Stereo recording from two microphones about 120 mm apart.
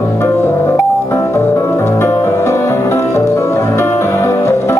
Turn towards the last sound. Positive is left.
turn(degrees=20)  # may be behind; listen again after turning